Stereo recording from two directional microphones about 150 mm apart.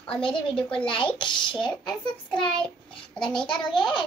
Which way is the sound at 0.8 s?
35° left (ahead or behind).